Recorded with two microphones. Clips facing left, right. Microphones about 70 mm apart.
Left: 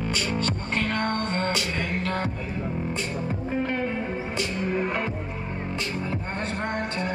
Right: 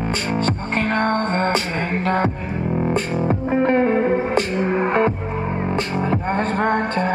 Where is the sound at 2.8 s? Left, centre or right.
Right.